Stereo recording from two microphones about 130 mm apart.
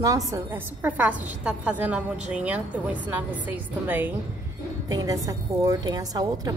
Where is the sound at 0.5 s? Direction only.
15° right (ahead or behind).